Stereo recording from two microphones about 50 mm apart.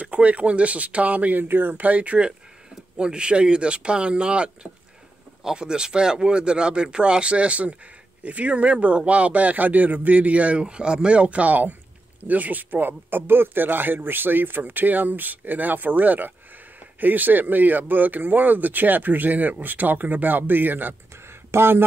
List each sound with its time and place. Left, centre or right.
0.0 s speech: right
21.5 s speech: right